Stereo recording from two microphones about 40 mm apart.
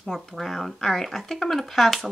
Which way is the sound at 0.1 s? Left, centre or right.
Centre.